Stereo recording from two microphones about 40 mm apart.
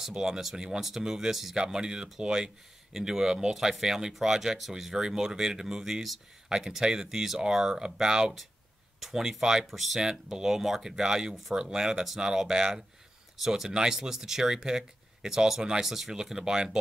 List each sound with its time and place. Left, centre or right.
0.1 s speech: centre
4.9 s speech: centre
9.6 s speech: centre
9.9 s speech: centre